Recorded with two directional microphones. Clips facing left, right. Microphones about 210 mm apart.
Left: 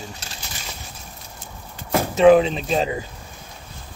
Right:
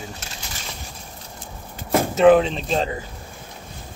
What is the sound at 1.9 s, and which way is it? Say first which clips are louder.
Speech: left 1 dB; centre (ahead or behind).